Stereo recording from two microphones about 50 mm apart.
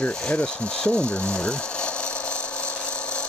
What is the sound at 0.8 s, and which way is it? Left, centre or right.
Speech, centre.